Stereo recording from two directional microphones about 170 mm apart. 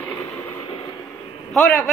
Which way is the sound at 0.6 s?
30° left (ahead or behind).